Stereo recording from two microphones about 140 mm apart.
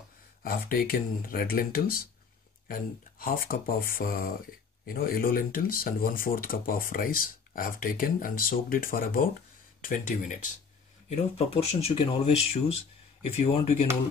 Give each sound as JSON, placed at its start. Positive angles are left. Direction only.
{"t": 0.4, "sound": "speech", "side_deg": 90}
{"t": 11.1, "sound": "speech", "side_deg": 50}